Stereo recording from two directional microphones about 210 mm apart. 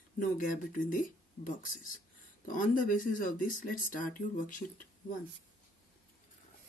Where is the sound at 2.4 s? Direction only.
40° left (ahead or behind).